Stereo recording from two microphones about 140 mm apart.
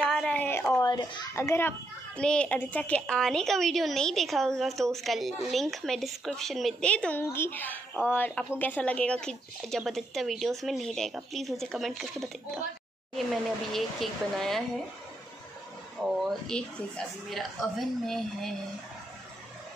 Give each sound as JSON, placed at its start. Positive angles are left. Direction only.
{"t": 0.0, "sound": "a sound", "side_deg": 5}
{"t": 1.3, "sound": "a child's voice", "side_deg": 20}
{"t": 16.0, "sound": "a woman's voice", "side_deg": 5}